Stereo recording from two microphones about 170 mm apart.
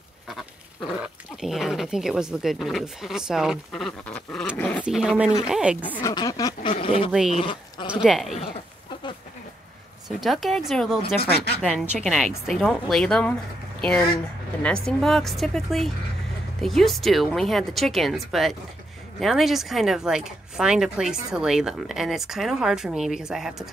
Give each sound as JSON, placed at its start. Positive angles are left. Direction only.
{"t": 1.0, "sound": "speech", "side_deg": 0}
{"t": 4.8, "sound": "speech", "side_deg": -5}
{"t": 5.9, "sound": "speech", "side_deg": 10}
{"t": 6.1, "sound": "duck", "side_deg": 20}
{"t": 7.1, "sound": "speech", "side_deg": -5}
{"t": 10.0, "sound": "speech", "side_deg": 0}
{"t": 11.1, "sound": "speech", "side_deg": 65}
{"t": 11.9, "sound": "speech", "side_deg": 0}